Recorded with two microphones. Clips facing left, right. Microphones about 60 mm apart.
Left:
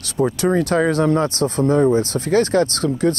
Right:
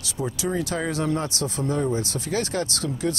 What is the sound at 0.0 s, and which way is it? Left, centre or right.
Speech, left.